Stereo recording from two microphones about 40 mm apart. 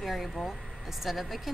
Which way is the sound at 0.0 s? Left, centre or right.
Centre.